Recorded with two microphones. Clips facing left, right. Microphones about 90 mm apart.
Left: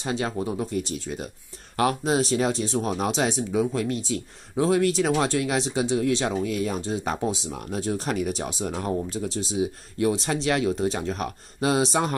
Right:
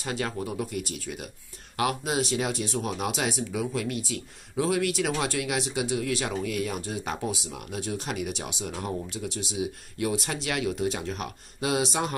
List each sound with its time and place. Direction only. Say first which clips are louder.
0.0 s speech: left 4 dB; 25° left (ahead or behind)